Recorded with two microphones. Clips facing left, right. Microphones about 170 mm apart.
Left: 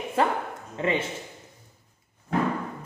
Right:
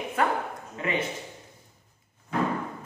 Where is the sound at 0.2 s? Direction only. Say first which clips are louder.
Left 2 dB; 30° left (ahead or behind).